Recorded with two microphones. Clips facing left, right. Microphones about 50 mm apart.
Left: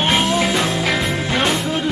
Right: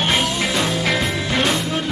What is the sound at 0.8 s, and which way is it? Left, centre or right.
Music, centre.